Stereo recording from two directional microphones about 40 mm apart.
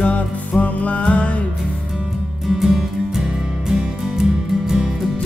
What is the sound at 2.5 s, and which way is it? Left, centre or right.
Music, centre.